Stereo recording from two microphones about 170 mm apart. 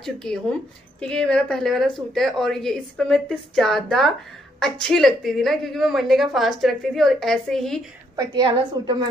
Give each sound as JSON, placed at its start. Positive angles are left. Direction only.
{"t": 0.0, "sound": "a woman's voice", "side_deg": 5}
{"t": 8.8, "sound": "a woman's voice", "side_deg": -25}